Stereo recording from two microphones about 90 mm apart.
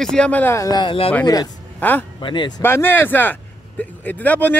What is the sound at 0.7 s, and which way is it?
Speech, 70° left (ahead or behind).